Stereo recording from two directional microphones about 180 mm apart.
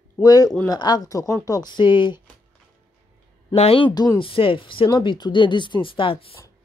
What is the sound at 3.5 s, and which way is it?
Speech, 30° left (ahead or behind).